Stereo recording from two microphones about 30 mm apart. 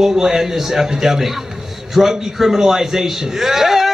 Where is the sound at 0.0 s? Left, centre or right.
Centre.